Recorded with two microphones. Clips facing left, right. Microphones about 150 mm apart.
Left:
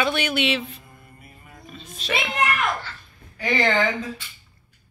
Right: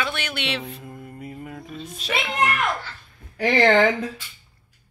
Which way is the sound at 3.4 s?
55° right (ahead or behind).